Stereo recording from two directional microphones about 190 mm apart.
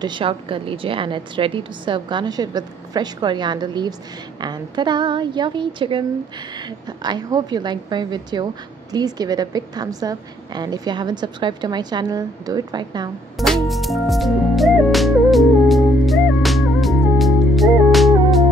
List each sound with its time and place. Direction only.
0.0 s a woman's voice: 25° right (ahead or behind)
13.4 s music: centre (ahead or behind)